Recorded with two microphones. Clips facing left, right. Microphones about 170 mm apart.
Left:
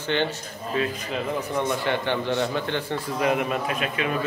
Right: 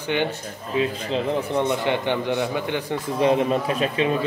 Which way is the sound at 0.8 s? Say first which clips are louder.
Right 4 dB; 25° right (ahead or behind).